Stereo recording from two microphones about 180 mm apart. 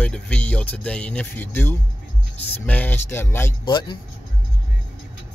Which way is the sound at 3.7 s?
25° left (ahead or behind).